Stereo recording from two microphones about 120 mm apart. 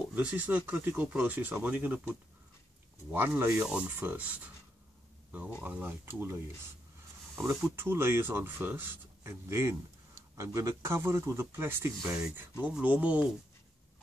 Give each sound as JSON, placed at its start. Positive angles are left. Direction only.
{"t": 0.1, "sound": "speech", "side_deg": -10}
{"t": 5.6, "sound": "speech", "side_deg": -15}
{"t": 7.7, "sound": "speech", "side_deg": -20}